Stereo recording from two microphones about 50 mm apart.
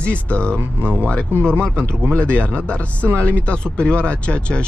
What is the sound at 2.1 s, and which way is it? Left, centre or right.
Speech, left.